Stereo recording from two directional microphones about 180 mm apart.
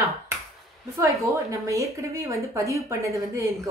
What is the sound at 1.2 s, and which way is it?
Speech, 15° right (ahead or behind).